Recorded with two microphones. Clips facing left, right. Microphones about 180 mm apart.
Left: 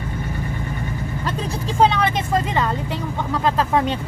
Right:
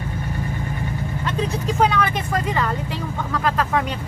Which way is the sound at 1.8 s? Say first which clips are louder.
Left 3 dB; 25° left (ahead or behind).